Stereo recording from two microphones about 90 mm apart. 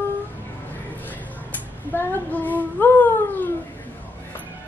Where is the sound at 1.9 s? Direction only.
20° left (ahead or behind).